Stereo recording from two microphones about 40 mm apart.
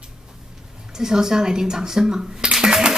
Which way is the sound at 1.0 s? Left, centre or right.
Centre.